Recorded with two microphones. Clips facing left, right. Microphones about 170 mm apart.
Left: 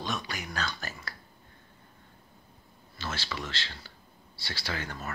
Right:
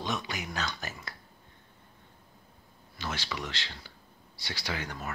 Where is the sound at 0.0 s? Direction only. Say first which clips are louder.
Right 1 dB; 20° right (ahead or behind).